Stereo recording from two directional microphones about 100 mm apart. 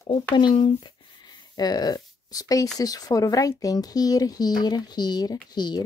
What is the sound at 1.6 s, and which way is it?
Speech, 40° left (ahead or behind).